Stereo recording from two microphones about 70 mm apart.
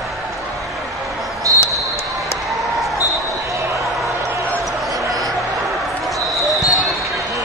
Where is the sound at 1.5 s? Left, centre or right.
Right.